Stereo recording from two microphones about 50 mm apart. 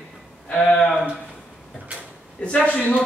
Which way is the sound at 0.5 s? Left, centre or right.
Centre.